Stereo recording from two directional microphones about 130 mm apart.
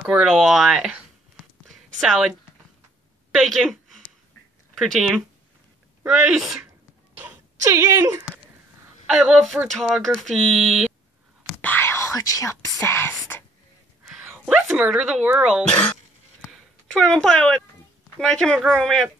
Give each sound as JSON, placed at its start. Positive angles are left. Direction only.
{"t": 0.0, "sound": "a sound", "side_deg": -10}
{"t": 4.7, "sound": "speech", "side_deg": 0}
{"t": 7.6, "sound": "speech", "side_deg": -25}
{"t": 9.1, "sound": "speech", "side_deg": -5}
{"t": 11.6, "sound": "whispering", "side_deg": 15}
{"t": 14.0, "sound": "speech", "side_deg": -5}
{"t": 16.8, "sound": "speech", "side_deg": 5}